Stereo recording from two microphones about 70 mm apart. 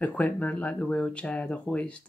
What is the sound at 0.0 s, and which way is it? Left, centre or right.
Speech, left.